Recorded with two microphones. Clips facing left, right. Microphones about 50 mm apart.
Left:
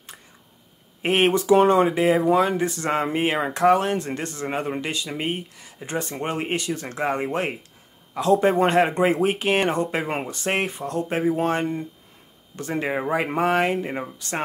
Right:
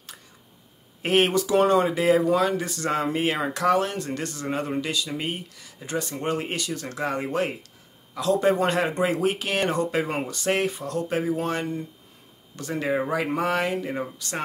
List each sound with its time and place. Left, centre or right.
1.0 s speech: left